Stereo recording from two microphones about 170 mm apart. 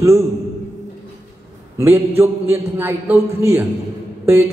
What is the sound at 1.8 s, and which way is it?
Speech, 15° right (ahead or behind).